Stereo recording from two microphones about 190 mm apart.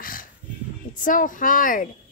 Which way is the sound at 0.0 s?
50° left (ahead or behind).